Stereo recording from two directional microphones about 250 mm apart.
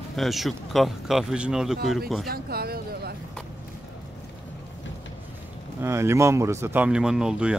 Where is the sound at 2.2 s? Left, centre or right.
Right.